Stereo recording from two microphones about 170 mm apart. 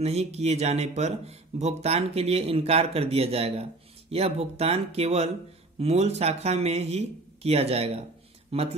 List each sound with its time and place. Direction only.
0.0 s speech: 40° right (ahead or behind)